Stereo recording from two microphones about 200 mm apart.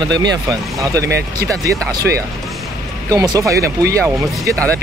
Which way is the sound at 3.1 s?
15° right (ahead or behind).